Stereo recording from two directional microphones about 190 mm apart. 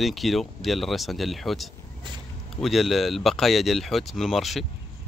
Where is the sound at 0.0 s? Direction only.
Centre (ahead or behind).